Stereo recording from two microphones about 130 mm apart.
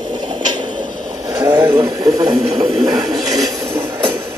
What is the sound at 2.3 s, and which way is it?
Speech, 45° right (ahead or behind).